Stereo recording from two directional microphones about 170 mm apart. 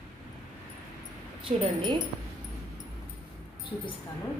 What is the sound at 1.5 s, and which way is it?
Speech, 35° right (ahead or behind).